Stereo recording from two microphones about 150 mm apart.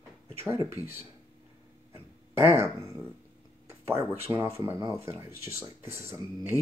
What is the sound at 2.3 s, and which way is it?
Speech, 15° right (ahead or behind).